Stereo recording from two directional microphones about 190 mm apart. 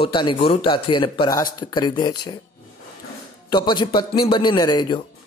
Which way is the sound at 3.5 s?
25° left (ahead or behind).